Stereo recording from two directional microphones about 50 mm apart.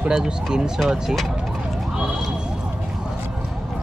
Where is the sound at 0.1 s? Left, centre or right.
Centre.